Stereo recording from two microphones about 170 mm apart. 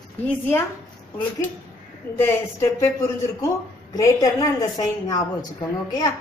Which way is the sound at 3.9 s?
20° left (ahead or behind).